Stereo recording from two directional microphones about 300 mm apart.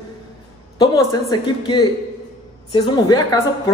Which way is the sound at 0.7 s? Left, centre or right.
Centre.